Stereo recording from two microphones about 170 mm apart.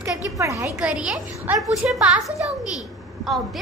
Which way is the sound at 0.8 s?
5° right (ahead or behind).